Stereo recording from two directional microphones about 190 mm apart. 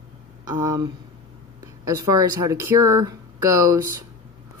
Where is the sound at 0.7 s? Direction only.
20° right (ahead or behind).